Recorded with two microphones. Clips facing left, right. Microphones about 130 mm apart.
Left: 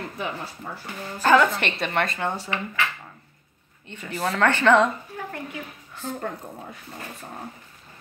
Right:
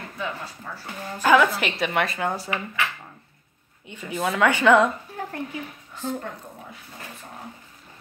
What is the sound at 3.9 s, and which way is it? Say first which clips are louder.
Speech: right 1 dB; centre (ahead or behind).